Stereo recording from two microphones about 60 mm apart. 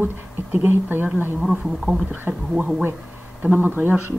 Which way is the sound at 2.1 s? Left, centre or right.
Right.